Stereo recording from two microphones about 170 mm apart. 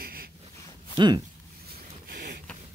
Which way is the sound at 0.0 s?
65° right (ahead or behind).